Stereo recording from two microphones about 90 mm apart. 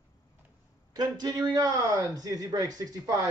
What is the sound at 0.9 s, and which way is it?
A man's voice, 45° right (ahead or behind).